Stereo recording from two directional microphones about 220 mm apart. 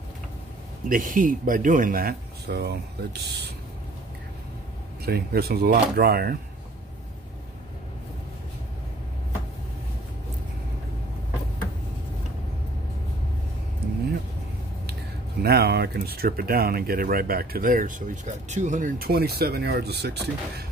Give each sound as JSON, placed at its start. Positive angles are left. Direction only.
{"t": 0.8, "sound": "speech", "side_deg": -40}
{"t": 5.0, "sound": "speech", "side_deg": -45}
{"t": 15.4, "sound": "speech", "side_deg": -45}